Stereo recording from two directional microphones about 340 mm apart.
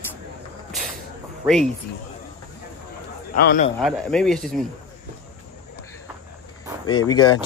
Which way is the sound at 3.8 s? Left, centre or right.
Centre.